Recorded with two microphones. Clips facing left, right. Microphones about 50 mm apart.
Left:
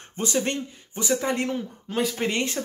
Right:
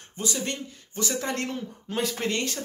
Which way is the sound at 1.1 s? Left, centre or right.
Centre.